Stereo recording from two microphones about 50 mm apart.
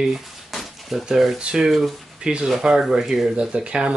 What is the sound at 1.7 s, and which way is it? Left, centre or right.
Speech, centre.